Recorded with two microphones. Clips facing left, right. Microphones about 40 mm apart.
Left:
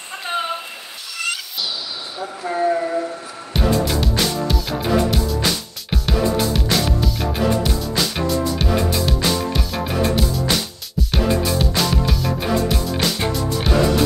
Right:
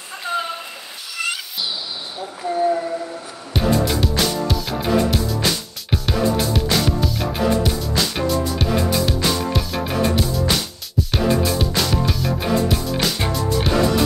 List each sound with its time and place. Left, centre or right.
0.3 s a sound: left
1.1 s music: centre
3.5 s music: centre